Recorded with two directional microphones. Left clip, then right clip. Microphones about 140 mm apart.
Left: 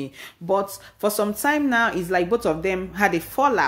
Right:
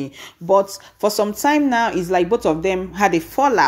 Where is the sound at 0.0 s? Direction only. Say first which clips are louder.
Right 4 dB; 20° right (ahead or behind).